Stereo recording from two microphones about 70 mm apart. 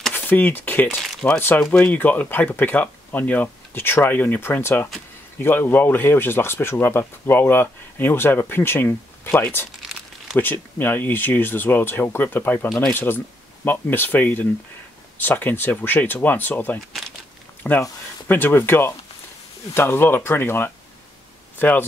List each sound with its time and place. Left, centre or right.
0.1 s speech: left
18.3 s speech: left